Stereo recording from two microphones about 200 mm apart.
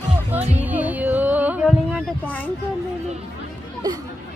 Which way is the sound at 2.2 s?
10° left (ahead or behind).